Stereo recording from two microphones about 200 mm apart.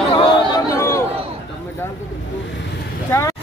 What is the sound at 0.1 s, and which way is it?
Chatter, 20° left (ahead or behind).